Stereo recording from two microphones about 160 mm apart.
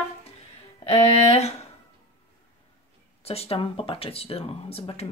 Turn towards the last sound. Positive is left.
turn(degrees=40)  # may be behind; listen again after turning